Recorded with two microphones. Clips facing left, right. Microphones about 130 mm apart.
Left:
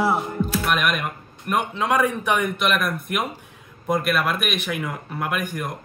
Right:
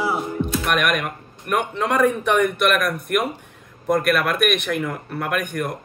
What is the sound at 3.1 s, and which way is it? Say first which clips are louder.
Speech: right 6 dB; 50° right (ahead or behind).